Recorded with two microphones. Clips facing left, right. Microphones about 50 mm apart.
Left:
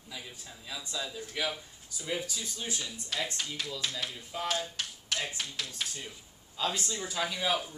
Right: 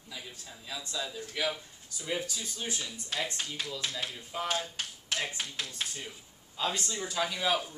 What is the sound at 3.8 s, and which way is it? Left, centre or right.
Speech, right.